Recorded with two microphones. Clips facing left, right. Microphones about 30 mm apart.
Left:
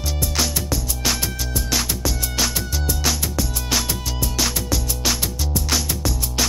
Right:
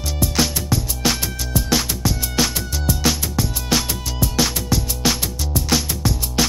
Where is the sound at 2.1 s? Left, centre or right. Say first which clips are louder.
Right 2 dB; centre.